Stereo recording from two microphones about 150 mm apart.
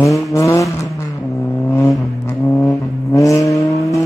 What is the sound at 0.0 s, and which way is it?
Vehicle, 20° left (ahead or behind).